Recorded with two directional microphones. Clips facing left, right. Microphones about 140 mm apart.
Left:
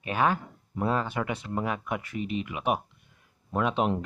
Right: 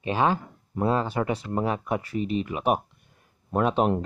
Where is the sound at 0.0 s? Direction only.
30° right (ahead or behind).